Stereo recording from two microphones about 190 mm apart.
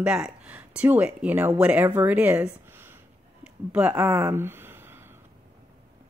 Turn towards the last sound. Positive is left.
turn(degrees=-10)  # may be behind; listen again after turning